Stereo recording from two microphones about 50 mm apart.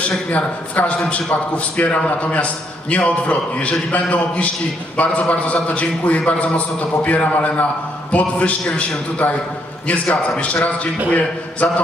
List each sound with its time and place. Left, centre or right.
0.3 s a man's voice: left